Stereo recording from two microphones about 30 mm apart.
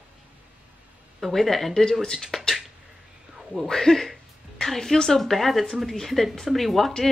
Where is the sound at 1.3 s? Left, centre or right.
Centre.